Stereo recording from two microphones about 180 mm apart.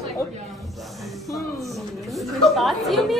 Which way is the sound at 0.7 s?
Centre (ahead or behind).